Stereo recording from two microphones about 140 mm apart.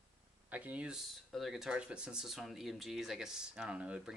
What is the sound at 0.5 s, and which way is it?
Speech, 10° right (ahead or behind).